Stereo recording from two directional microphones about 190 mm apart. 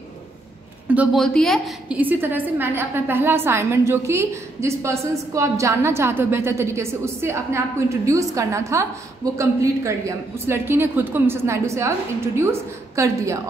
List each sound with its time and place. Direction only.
0.9 s a woman's voice: centre (ahead or behind)
2.0 s a woman's voice: 10° right (ahead or behind)